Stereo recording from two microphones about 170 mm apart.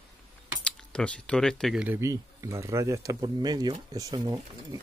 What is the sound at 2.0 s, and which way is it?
Speech, 20° right (ahead or behind).